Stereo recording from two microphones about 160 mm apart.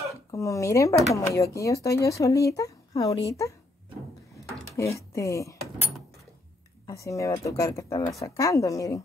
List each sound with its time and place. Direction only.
0.3 s speech: 20° left (ahead or behind)
4.7 s speech: 20° left (ahead or behind)